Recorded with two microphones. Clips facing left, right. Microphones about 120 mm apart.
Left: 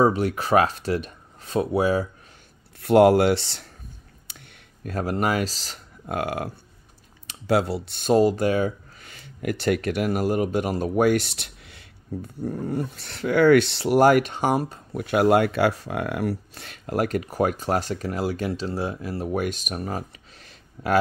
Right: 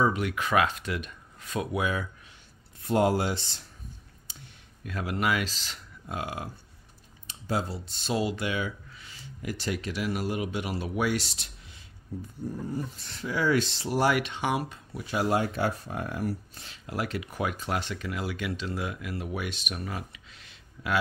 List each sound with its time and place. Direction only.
0.0 s speech: 35° left (ahead or behind)
2.8 s speech: 70° left (ahead or behind)
4.8 s speech: 40° left (ahead or behind)
6.0 s speech: 60° left (ahead or behind)
7.2 s speech: 75° left (ahead or behind)
8.1 s speech: 45° left (ahead or behind)
9.1 s speech: 60° left (ahead or behind)
14.0 s speech: 45° left (ahead or behind)
15.0 s speech: 60° left (ahead or behind); by 21.0 s 45° left (ahead or behind)